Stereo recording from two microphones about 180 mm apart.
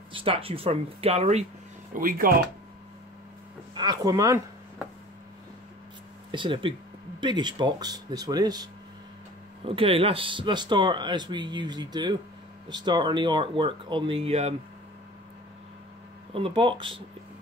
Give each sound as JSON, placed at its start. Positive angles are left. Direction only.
{"t": 0.1, "sound": "speech", "side_deg": -30}
{"t": 2.0, "sound": "speech", "side_deg": -50}
{"t": 3.7, "sound": "speech", "side_deg": -25}
{"t": 6.3, "sound": "speech", "side_deg": -30}
{"t": 9.7, "sound": "speech", "side_deg": -30}
{"t": 16.3, "sound": "speech", "side_deg": -30}